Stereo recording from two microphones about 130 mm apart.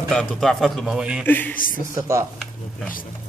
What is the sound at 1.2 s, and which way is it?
Speech, 15° left (ahead or behind).